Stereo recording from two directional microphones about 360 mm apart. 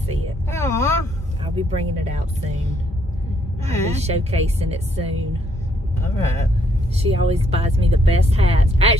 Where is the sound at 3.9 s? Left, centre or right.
Centre.